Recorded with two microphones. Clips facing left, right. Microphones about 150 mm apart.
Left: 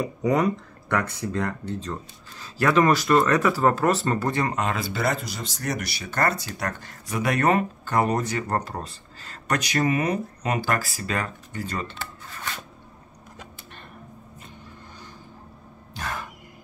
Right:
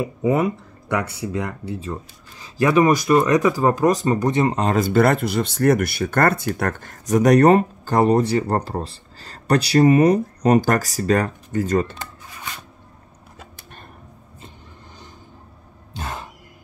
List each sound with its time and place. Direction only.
0.0 s speech: 5° right (ahead or behind)
4.6 s speech: 40° right (ahead or behind)
12.0 s rub: 15° right (ahead or behind)
16.0 s a sound: 25° right (ahead or behind)